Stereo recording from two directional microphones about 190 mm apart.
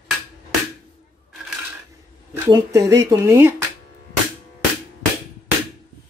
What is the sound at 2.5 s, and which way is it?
Speech, 15° right (ahead or behind).